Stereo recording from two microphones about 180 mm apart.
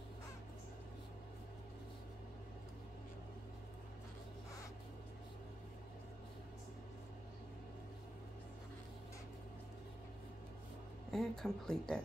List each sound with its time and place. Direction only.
11.1 s speech: centre (ahead or behind)